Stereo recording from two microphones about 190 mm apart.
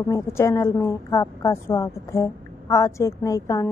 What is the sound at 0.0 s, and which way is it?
A woman's voice, 15° left (ahead or behind).